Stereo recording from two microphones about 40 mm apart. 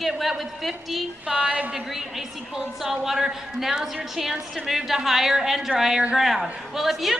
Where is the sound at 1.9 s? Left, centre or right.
Centre.